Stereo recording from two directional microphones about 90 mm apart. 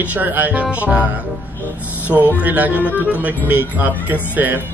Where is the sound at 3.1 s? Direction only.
15° right (ahead or behind).